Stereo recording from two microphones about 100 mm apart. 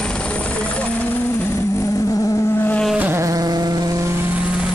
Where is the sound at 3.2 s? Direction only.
35° right (ahead or behind).